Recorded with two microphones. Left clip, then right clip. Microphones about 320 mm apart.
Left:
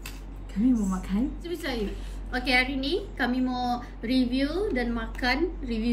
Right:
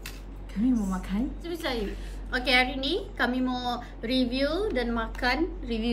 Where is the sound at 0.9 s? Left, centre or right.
Centre.